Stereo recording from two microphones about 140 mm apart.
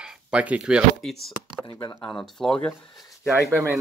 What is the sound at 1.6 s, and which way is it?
Speech, 30° left (ahead or behind).